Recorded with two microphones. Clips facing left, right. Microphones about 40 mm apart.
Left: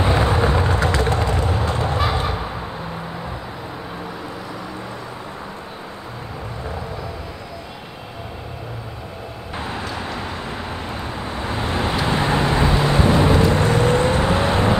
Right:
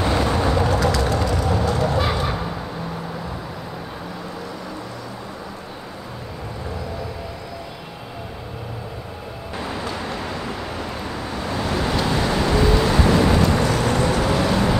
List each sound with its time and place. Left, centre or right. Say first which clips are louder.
0.0 s vehicle: left 2 dB; left
11.1 s vehicle: even; left